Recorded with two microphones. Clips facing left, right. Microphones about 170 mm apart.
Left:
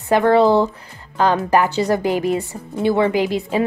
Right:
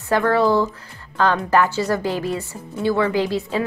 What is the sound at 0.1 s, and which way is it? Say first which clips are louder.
A woman's voice: left 4 dB; 20° left (ahead or behind).